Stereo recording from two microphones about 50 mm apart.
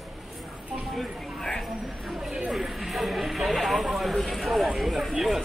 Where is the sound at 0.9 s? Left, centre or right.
Centre.